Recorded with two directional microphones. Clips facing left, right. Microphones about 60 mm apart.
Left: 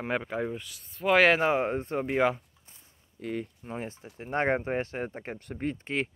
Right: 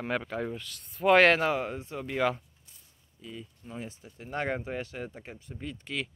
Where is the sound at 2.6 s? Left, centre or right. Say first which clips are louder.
Left 3 dB; left.